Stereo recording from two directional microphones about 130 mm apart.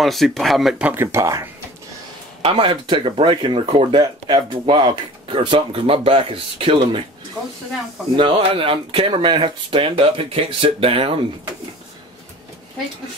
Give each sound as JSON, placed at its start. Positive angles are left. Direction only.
{"t": 0.0, "sound": "speech", "side_deg": 0}
{"t": 1.0, "sound": "speech", "side_deg": -25}
{"t": 2.4, "sound": "speech", "side_deg": -45}
{"t": 4.0, "sound": "speech", "side_deg": -30}
{"t": 8.2, "sound": "speech", "side_deg": -40}